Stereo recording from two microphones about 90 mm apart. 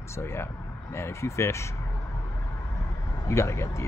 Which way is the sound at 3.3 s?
30° left (ahead or behind).